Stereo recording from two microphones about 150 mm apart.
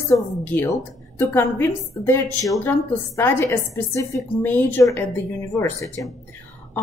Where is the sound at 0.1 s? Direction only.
20° left (ahead or behind).